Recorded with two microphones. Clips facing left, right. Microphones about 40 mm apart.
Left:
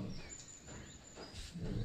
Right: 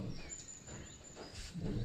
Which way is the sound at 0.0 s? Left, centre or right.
Centre.